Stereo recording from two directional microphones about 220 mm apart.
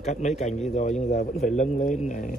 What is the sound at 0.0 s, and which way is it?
A man's voice, 30° left (ahead or behind).